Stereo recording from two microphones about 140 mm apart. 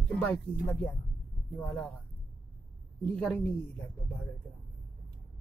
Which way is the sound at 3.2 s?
5° left (ahead or behind).